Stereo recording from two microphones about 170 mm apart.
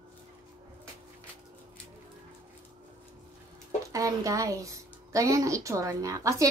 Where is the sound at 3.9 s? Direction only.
20° right (ahead or behind).